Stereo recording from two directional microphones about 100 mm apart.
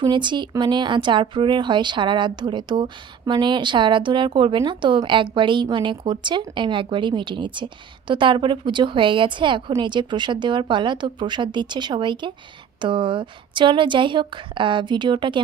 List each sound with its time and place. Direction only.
0.0 s a woman's voice: 50° right (ahead or behind)